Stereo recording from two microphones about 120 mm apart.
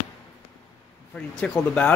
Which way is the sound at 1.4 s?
10° left (ahead or behind).